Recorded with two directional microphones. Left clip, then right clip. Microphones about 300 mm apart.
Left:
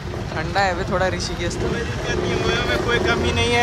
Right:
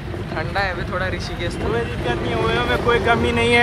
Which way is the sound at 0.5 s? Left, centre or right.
Centre.